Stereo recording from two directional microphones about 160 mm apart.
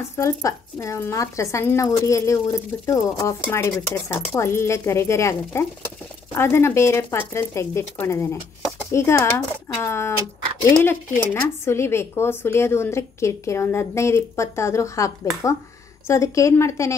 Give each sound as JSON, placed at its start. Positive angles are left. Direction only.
{"t": 0.2, "sound": "speech", "side_deg": 20}